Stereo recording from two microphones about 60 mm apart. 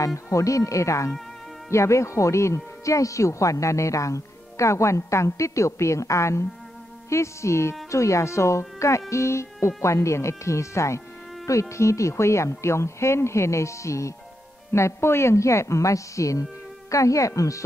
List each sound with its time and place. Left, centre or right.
0.0 s speech: left